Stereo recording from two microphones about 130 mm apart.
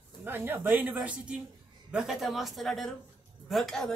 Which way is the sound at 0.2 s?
15° right (ahead or behind).